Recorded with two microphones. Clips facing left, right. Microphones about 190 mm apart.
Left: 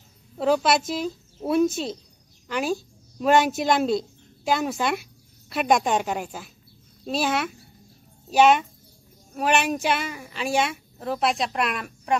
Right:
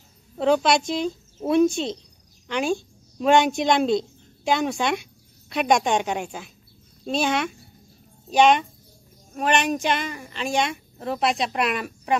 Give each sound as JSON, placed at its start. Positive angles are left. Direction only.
{"t": 0.4, "sound": "a woman's voice", "side_deg": 5}